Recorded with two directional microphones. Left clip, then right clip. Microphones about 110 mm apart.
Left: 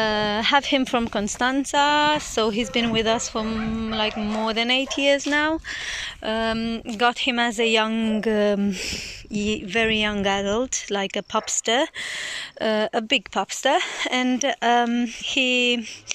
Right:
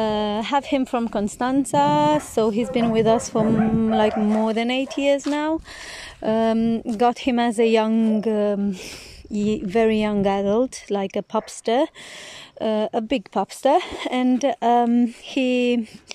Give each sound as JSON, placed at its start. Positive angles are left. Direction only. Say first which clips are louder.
{"t": 0.0, "sound": "speech", "louder": "left 1 dB", "side_deg": -35}
{"t": 2.4, "sound": "a woman's voice", "louder": "right 2 dB", "side_deg": -35}
{"t": 4.4, "sound": "speech", "louder": "even", "side_deg": -45}
{"t": 6.2, "sound": "speech", "louder": "right 5 dB", "side_deg": -55}
{"t": 9.3, "sound": "speech", "louder": "right 2 dB", "side_deg": -40}
{"t": 13.1, "sound": "speech", "louder": "left 1 dB", "side_deg": -40}